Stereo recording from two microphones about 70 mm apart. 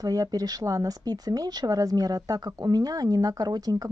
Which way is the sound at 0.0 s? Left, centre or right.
Right.